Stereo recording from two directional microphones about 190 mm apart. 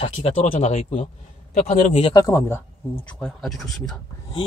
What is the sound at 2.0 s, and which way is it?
Speech, 15° left (ahead or behind).